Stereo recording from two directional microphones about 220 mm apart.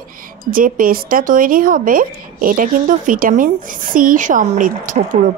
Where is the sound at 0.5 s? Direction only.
40° right (ahead or behind).